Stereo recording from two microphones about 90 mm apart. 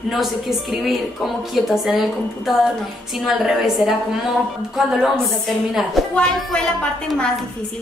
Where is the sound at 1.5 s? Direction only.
5° right (ahead or behind).